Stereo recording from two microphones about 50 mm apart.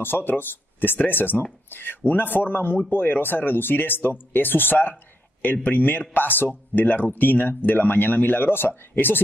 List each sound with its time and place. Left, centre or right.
0.0 s speech: left